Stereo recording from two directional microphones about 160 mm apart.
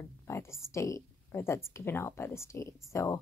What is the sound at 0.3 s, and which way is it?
A woman's voice, 15° left (ahead or behind).